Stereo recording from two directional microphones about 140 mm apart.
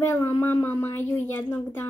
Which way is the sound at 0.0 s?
15° left (ahead or behind).